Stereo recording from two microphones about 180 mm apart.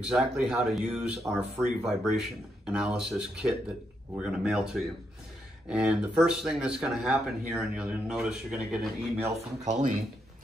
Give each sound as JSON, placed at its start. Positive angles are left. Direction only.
{"t": 0.1, "sound": "speech", "side_deg": 0}
{"t": 9.7, "sound": "speech", "side_deg": -40}